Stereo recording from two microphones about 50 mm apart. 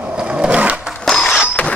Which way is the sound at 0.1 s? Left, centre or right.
Right.